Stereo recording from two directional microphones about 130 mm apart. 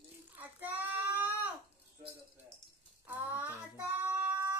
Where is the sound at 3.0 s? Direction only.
15° right (ahead or behind).